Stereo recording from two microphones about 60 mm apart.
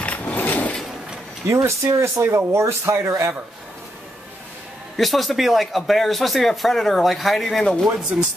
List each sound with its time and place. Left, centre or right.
0.0 s a sound: left
1.5 s speech: right
4.9 s speech: centre